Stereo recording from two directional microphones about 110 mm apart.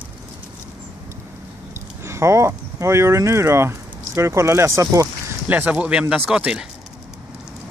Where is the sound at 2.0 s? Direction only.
25° right (ahead or behind).